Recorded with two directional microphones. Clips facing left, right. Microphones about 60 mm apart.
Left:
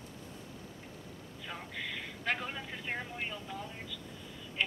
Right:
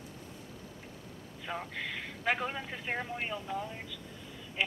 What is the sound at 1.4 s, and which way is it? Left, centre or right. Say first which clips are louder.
A man's voice: right 4 dB; centre.